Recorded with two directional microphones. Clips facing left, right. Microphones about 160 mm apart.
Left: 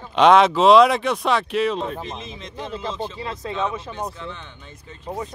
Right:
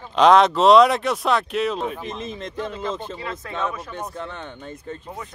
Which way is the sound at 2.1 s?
50° right (ahead or behind).